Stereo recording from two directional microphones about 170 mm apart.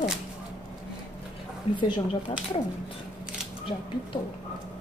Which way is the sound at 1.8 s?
30° left (ahead or behind).